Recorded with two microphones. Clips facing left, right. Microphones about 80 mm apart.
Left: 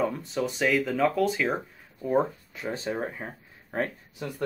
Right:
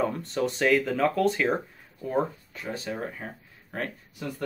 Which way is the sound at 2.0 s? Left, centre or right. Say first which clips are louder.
Left 2 dB; centre.